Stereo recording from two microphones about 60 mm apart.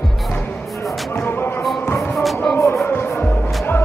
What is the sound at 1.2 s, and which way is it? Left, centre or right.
Basketball bounce, left.